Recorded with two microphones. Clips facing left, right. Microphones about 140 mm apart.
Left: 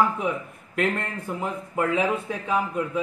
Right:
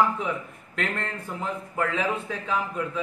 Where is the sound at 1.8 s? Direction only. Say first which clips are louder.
Left 4 dB; 15° left (ahead or behind).